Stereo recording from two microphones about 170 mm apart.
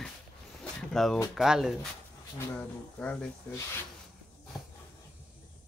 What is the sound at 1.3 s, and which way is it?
Speech, 5° right (ahead or behind).